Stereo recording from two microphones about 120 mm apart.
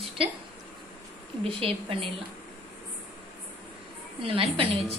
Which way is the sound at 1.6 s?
45° right (ahead or behind).